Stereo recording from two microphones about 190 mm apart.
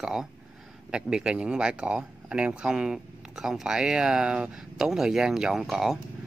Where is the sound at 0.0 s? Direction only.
5° right (ahead or behind).